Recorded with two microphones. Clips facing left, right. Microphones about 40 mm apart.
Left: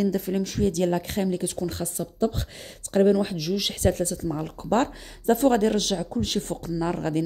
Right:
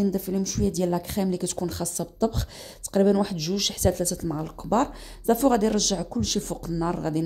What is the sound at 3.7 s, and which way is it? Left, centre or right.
Speech, left.